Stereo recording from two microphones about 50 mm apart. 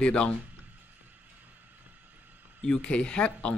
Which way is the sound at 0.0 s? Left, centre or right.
Left.